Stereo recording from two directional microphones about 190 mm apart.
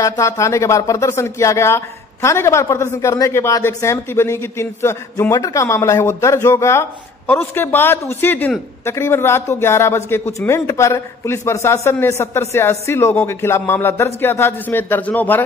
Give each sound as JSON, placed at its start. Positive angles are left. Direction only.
{"t": 0.0, "sound": "a woman's voice", "side_deg": 15}